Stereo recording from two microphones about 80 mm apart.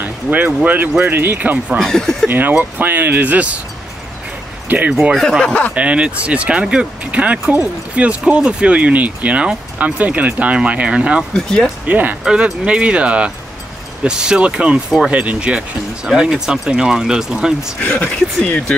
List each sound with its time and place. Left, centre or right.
0.0 s music: right
0.7 s speech: right
1.8 s speech: centre
2.2 s speech: right
4.6 s speech: centre
5.1 s speech: centre
5.4 s speech: centre
5.8 s speech: centre
11.3 s speech: centre
11.8 s speech: centre
17.8 s speech: left
18.4 s speech: centre